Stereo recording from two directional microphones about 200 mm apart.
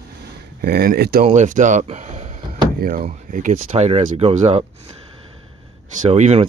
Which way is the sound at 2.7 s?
45° right (ahead or behind).